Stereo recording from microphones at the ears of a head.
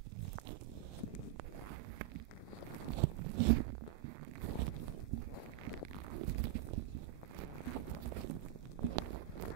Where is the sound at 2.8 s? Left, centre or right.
Right.